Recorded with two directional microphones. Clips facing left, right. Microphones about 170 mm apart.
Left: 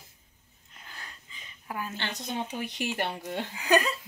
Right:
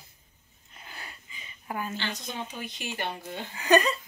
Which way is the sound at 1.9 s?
60° left (ahead or behind).